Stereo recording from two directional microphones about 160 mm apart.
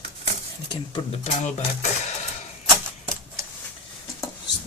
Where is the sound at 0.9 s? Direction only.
40° left (ahead or behind).